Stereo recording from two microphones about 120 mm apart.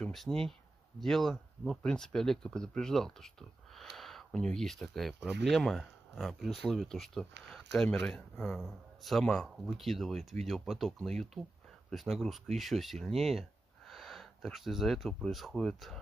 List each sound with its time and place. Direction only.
0.0 s speech: 5° left (ahead or behind)